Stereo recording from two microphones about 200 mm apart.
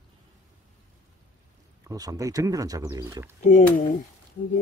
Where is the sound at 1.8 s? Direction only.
15° right (ahead or behind).